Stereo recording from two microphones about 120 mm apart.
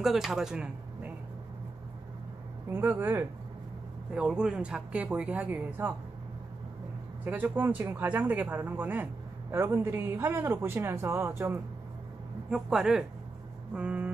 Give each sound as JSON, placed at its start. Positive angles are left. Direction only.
{"t": 0.0, "sound": "speech", "side_deg": -5}
{"t": 2.7, "sound": "speech", "side_deg": -20}
{"t": 4.3, "sound": "speech", "side_deg": -5}
{"t": 7.2, "sound": "speech", "side_deg": -15}
{"t": 12.4, "sound": "speech", "side_deg": -5}